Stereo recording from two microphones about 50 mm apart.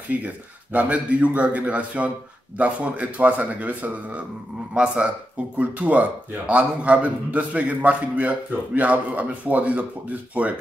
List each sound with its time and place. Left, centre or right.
0.1 s a man's voice: right
4.7 s a man's voice: right